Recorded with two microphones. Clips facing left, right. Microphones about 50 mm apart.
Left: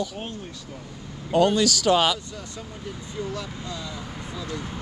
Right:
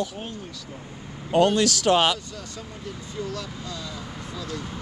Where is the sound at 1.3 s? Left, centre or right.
Centre.